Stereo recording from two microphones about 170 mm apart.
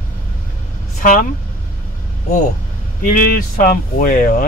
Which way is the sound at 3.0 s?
55° left (ahead or behind).